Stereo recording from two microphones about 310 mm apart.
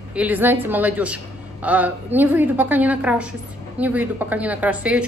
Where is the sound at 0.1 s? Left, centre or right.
Centre.